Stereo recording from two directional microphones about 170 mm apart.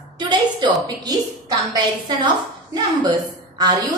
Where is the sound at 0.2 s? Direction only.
25° right (ahead or behind).